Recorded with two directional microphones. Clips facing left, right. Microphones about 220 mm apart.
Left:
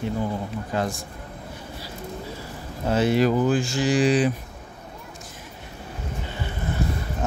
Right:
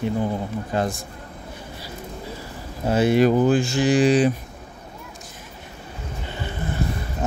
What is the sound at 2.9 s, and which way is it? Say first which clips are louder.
Speech: right 3 dB; 15° right (ahead or behind).